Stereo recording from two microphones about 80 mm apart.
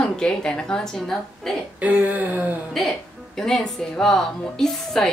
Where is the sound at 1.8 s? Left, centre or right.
Centre.